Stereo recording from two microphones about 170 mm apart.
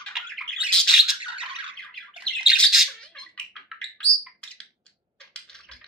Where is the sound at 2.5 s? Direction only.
Centre (ahead or behind).